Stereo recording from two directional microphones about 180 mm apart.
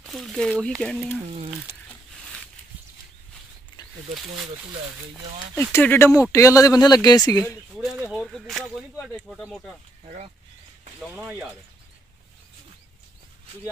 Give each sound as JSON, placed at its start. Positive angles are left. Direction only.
{"t": 0.0, "sound": "speech", "side_deg": 0}
{"t": 5.6, "sound": "speech", "side_deg": 10}
{"t": 7.7, "sound": "speech", "side_deg": -5}
{"t": 10.0, "sound": "speech", "side_deg": -40}
{"t": 11.0, "sound": "speech", "side_deg": -5}